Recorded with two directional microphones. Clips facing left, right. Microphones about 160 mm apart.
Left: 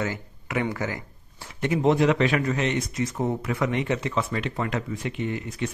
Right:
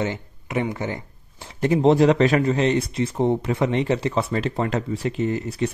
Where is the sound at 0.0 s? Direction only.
25° right (ahead or behind).